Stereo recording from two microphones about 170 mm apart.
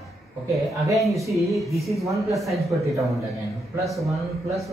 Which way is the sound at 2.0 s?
20° right (ahead or behind).